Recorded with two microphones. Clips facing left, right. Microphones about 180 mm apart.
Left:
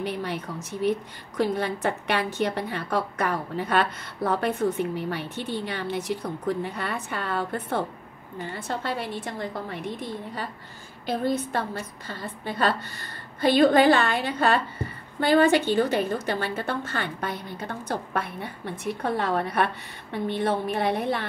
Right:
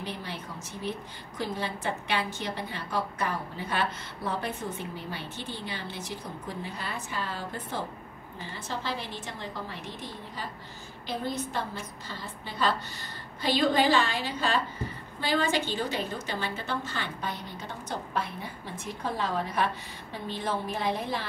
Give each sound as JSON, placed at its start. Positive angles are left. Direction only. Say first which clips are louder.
{"t": 0.0, "sound": "a sound", "louder": "left 8 dB", "side_deg": 65}
{"t": 1.4, "sound": "a woman's voice", "louder": "left 8 dB", "side_deg": 65}
{"t": 12.1, "sound": "a woman's voice", "louder": "left 6 dB", "side_deg": 55}